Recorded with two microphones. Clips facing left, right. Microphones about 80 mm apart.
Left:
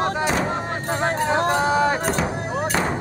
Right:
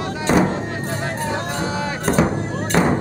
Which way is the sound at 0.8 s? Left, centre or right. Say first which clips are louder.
Left 6 dB; left.